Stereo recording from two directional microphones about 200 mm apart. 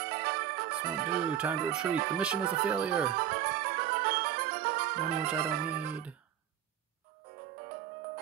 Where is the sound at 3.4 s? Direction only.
50° right (ahead or behind).